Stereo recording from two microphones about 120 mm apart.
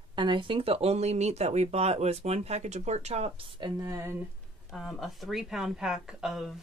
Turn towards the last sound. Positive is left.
turn(degrees=-5)  # may be behind; listen again after turning